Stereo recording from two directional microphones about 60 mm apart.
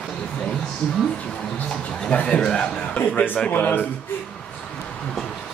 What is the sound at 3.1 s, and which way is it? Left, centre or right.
Speech, left.